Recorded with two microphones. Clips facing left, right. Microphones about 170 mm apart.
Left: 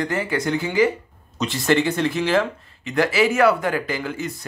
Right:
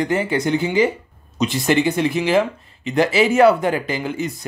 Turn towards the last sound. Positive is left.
turn(degrees=-20)  # may be behind; listen again after turning